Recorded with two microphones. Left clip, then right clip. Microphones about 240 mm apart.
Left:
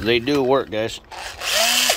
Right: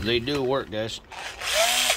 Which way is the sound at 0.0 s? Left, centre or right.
Centre.